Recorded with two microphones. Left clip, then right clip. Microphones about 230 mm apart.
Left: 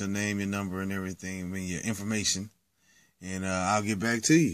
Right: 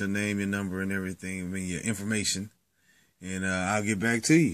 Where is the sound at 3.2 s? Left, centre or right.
Centre.